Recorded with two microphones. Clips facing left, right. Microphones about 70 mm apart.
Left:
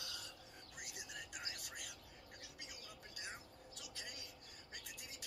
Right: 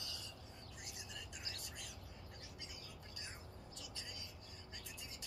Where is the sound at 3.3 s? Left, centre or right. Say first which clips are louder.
Left 2 dB; left.